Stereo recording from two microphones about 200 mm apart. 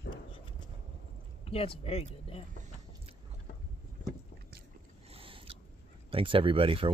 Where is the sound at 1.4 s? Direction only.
30° left (ahead or behind).